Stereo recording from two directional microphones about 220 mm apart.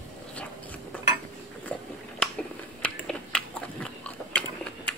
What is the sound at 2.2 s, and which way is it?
Biting, 5° left (ahead or behind).